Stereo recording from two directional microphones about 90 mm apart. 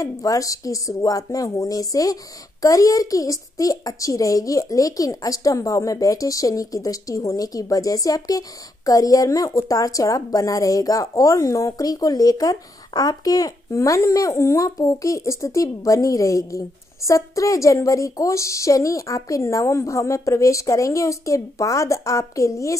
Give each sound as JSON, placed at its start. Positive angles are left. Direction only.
{"t": 0.0, "sound": "a woman's voice", "side_deg": 40}